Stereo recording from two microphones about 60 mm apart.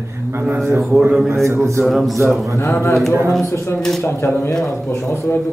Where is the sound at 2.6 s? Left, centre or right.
Left.